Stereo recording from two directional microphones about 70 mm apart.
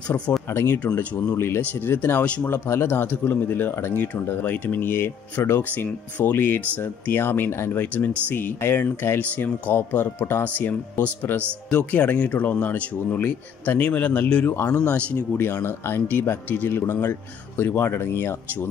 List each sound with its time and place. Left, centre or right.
0.5 s speech: left
1.6 s speech: left
10.4 s speech: left
15.3 s speech: left